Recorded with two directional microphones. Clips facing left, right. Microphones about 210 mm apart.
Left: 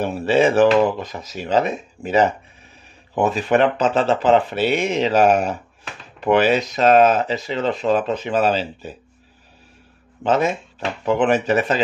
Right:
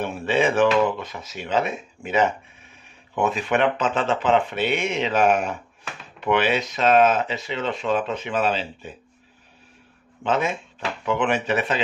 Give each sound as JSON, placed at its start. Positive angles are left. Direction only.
{"t": 0.0, "sound": "speech", "side_deg": 40}
{"t": 10.2, "sound": "speech", "side_deg": 40}